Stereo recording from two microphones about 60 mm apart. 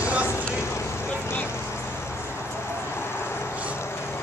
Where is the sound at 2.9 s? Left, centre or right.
Left.